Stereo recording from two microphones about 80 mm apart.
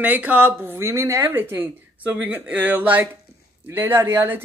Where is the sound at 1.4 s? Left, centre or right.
Right.